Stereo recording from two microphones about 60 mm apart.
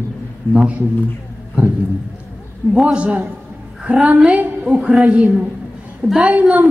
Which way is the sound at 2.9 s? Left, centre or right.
Right.